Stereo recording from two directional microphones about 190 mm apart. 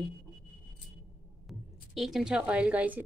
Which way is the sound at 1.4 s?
Centre (ahead or behind).